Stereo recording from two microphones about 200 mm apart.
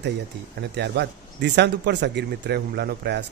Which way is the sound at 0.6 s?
55° right (ahead or behind).